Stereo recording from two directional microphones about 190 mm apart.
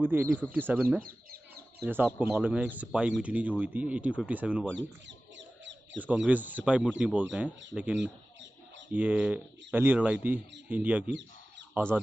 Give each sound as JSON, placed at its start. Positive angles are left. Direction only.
{"t": 0.0, "sound": "speech", "side_deg": -10}
{"t": 1.0, "sound": "chicken", "side_deg": -55}
{"t": 2.1, "sound": "speech", "side_deg": -10}
{"t": 5.9, "sound": "speech", "side_deg": -5}
{"t": 8.0, "sound": "bird", "side_deg": -70}
{"t": 8.9, "sound": "speech", "side_deg": -5}